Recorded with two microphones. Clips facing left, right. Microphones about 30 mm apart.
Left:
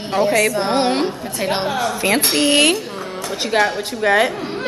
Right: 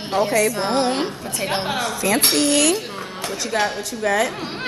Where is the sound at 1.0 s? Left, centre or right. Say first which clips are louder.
Left 4 dB; centre.